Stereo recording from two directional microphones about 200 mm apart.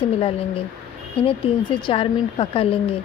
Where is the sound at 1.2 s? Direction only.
25° left (ahead or behind).